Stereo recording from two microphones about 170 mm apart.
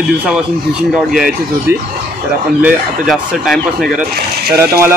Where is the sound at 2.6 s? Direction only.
Centre (ahead or behind).